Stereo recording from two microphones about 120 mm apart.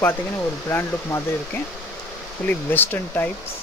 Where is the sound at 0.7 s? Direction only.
20° left (ahead or behind).